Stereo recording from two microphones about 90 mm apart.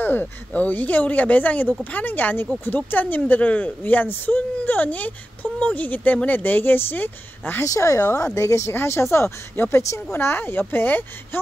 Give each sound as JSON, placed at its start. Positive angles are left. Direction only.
{"t": 0.0, "sound": "speech", "side_deg": 20}
{"t": 7.6, "sound": "speech", "side_deg": 35}